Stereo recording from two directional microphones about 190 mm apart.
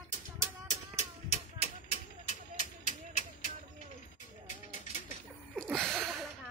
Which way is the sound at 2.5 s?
40° left (ahead or behind).